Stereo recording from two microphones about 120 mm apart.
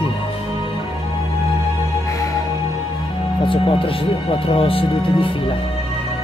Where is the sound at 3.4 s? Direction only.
45° left (ahead or behind).